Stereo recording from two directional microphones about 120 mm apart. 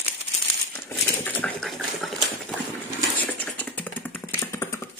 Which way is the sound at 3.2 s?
15° left (ahead or behind).